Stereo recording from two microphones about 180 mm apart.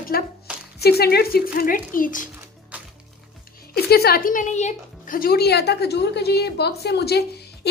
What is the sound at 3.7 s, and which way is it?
Speech, 60° left (ahead or behind).